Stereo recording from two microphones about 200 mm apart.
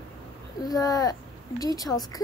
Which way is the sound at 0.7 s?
20° left (ahead or behind).